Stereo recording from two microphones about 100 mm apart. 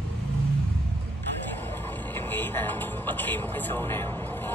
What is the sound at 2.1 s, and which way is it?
Music, 20° left (ahead or behind).